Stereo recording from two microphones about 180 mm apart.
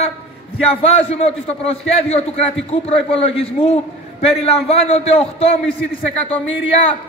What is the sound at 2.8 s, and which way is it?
A man's voice, 30° left (ahead or behind).